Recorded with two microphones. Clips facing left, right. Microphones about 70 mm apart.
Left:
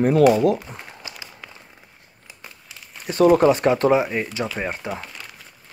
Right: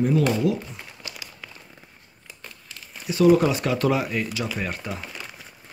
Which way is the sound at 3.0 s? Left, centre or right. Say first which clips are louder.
Left 3 dB; left.